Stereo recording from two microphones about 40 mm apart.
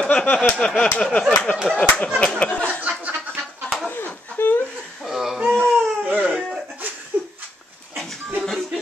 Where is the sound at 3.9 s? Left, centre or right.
Left.